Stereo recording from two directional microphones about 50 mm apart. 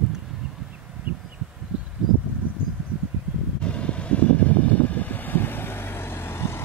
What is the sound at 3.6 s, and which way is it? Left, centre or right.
Vehicle, left.